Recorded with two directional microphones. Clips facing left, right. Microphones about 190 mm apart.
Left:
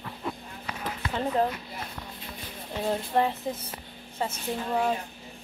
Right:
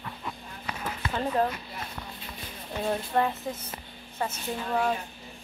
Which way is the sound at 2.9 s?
20° left (ahead or behind).